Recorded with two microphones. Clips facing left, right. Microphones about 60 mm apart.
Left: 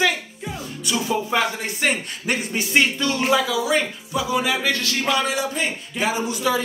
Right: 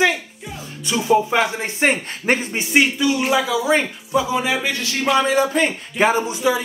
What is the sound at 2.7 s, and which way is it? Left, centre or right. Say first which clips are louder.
Speech: right 3 dB; centre.